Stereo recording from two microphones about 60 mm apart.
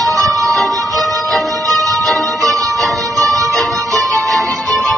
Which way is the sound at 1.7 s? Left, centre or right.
Right.